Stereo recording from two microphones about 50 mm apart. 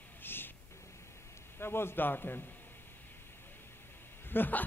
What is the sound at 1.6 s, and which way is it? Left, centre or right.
Speech, left.